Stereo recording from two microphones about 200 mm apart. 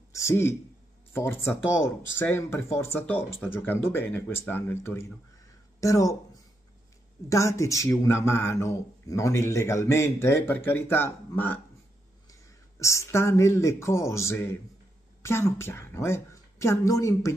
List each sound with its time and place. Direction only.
0.1 s a man's voice: 15° left (ahead or behind)
7.2 s speech: 15° left (ahead or behind)